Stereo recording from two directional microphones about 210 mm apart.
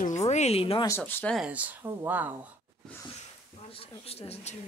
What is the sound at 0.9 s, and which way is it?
Speech, 10° left (ahead or behind).